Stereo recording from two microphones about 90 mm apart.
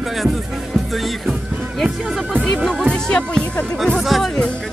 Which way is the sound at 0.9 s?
Centre (ahead or behind).